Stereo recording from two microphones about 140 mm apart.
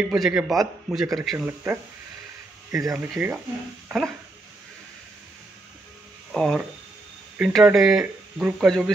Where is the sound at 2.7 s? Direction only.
20° right (ahead or behind).